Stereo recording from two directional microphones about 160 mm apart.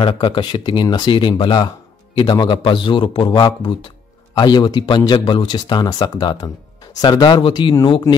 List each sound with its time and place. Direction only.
0.0 s a man's voice: 30° left (ahead or behind)